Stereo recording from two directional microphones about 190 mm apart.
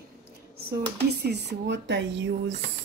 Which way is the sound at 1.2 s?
60° right (ahead or behind).